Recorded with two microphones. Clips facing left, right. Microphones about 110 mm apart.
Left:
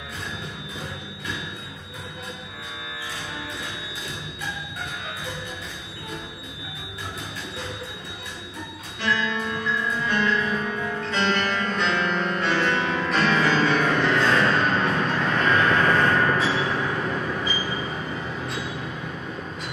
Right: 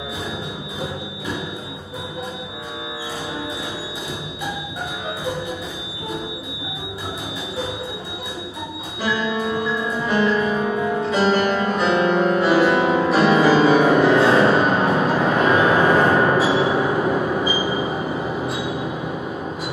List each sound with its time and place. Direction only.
9.0 s music: 10° right (ahead or behind)